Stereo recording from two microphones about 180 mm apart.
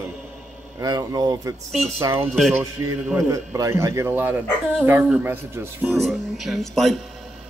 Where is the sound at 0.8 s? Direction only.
20° right (ahead or behind).